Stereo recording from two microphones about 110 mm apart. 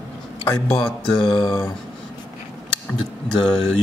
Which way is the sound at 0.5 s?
10° left (ahead or behind).